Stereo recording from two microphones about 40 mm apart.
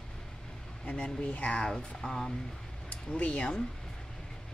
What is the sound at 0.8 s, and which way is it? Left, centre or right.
Speech, left.